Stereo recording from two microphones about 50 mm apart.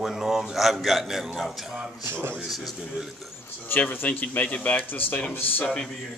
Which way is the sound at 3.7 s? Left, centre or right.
Left.